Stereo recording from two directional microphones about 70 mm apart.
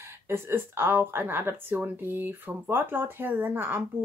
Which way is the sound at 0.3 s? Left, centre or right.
Right.